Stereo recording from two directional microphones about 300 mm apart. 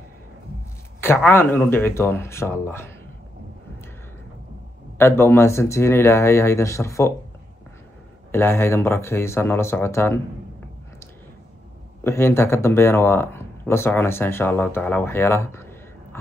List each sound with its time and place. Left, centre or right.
1.0 s speech: centre
4.9 s speech: centre
8.3 s speech: centre
12.0 s speech: centre